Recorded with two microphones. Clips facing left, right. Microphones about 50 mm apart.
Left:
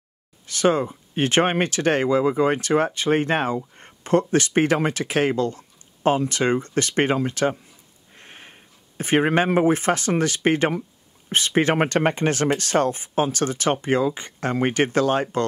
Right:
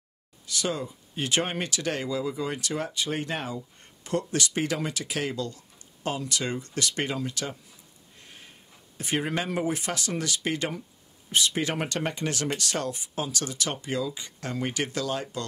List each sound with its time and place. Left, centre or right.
0.5 s speech: left